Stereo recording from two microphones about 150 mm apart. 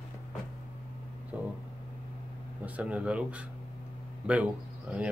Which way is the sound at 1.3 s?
10° right (ahead or behind).